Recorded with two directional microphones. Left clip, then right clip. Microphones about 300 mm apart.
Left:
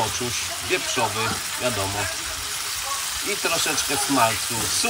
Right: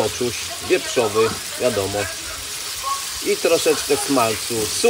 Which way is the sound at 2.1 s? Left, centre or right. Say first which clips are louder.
Left 1 dB; centre.